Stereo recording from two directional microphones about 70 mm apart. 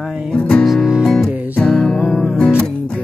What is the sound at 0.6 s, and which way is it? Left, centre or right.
Music, centre.